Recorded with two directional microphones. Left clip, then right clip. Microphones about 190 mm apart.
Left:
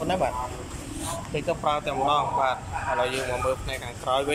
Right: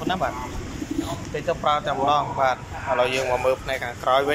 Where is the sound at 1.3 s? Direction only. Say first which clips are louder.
Right 3 dB; 5° left (ahead or behind).